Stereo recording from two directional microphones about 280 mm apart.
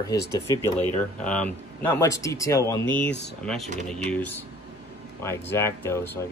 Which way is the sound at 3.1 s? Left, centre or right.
Left.